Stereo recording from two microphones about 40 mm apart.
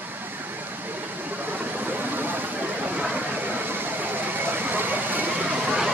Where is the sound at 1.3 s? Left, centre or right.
Right.